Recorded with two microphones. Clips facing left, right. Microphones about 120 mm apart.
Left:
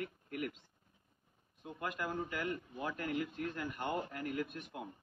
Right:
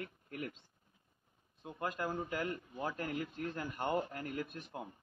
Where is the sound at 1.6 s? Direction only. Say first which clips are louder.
Right 2 dB; 30° right (ahead or behind).